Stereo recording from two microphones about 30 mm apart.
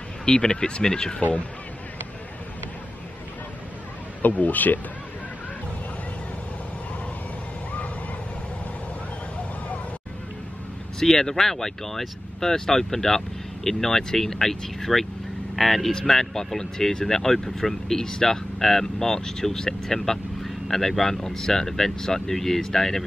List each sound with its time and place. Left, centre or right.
0.2 s speech: left
4.2 s speech: left
11.0 s speech: centre
16.5 s speech: centre